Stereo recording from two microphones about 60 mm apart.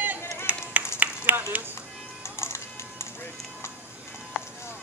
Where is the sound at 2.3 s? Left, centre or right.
Left.